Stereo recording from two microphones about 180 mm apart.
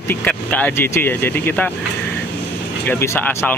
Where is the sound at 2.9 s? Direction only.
10° left (ahead or behind).